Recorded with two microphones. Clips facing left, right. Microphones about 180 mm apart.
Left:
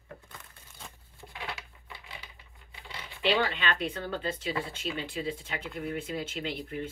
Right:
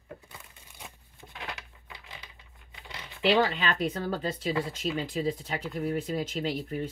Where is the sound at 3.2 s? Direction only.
40° right (ahead or behind).